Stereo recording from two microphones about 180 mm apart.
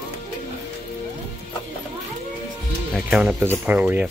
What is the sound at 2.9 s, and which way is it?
Music, 5° right (ahead or behind).